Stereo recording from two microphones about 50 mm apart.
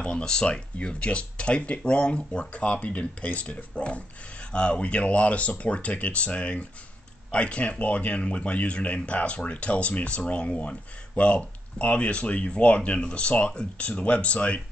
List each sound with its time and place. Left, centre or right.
0.0 s speech: centre